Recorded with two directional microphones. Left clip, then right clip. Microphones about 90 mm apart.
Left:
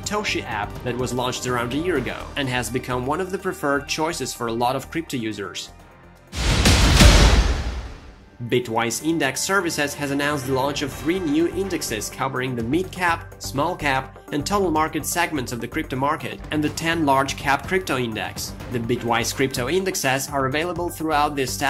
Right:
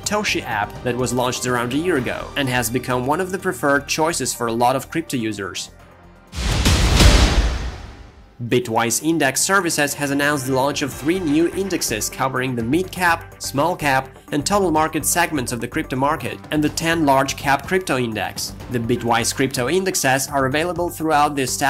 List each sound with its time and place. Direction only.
0.0 s speech: 45° right (ahead or behind)
8.5 s speech: 40° right (ahead or behind)